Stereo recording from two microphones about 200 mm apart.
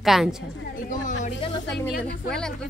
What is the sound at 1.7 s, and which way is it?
Speech, 5° left (ahead or behind).